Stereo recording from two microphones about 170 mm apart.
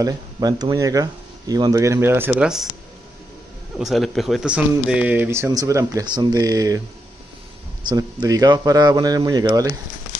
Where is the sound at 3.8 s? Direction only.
Centre (ahead or behind); by 6.8 s 20° right (ahead or behind).